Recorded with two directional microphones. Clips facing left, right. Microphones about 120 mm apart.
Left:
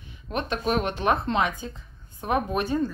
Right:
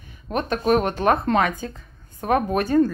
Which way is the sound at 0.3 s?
45° right (ahead or behind).